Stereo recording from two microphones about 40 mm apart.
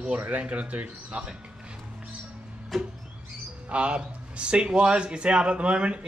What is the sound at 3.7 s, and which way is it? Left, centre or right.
Speech, right.